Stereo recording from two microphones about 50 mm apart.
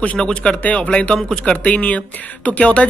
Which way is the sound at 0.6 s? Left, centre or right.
Left.